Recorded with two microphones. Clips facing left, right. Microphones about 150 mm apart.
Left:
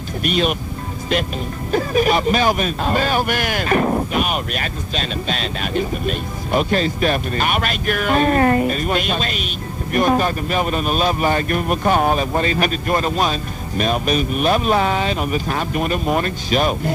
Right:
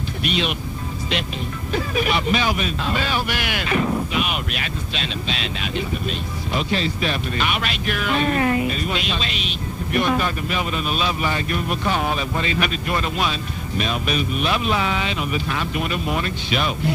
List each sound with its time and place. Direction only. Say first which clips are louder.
0.2 s speech: left 5 dB; 45° left (ahead or behind)
1.7 s speech: left 6 dB; 45° left (ahead or behind)